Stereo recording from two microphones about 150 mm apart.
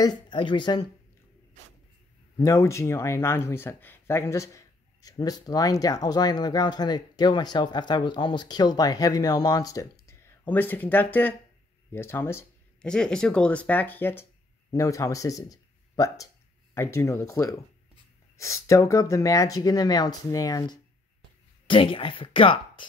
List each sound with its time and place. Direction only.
0.0 s speech: 30° left (ahead or behind)
2.3 s speech: 20° left (ahead or behind)
12.8 s speech: 5° left (ahead or behind); by 22.8 s 35° left (ahead or behind)